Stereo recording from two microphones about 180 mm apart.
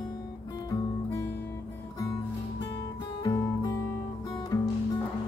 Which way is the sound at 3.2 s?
20° left (ahead or behind).